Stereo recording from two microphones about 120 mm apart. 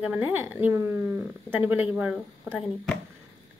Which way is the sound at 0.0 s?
10° right (ahead or behind).